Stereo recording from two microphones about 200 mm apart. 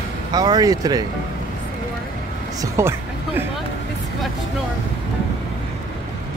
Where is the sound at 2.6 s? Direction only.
15° right (ahead or behind).